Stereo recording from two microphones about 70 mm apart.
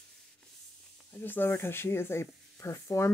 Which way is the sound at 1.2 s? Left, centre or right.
Left.